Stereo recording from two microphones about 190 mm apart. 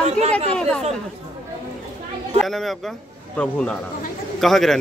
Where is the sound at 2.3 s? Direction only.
Centre (ahead or behind).